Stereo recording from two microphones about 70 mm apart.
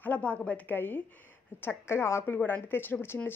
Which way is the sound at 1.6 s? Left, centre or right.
Left.